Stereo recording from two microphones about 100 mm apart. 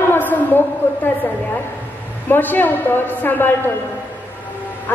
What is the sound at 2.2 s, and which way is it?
A woman's voice, 20° left (ahead or behind).